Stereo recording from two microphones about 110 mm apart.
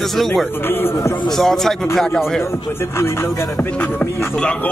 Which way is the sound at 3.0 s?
25° left (ahead or behind).